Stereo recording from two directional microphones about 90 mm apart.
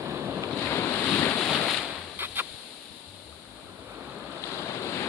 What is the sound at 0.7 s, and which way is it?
Boat, 20° left (ahead or behind).